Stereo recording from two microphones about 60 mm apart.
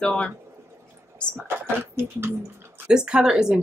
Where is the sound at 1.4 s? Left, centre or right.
Right.